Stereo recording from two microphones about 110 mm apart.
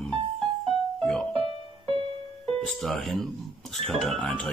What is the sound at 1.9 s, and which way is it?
Music, 55° right (ahead or behind).